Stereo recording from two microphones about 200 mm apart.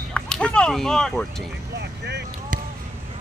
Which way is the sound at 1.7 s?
55° right (ahead or behind).